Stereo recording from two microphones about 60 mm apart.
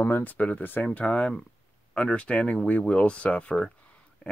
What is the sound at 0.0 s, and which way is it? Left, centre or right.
Speech, left.